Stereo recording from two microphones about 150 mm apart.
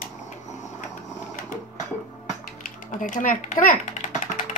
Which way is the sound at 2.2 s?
60° left (ahead or behind).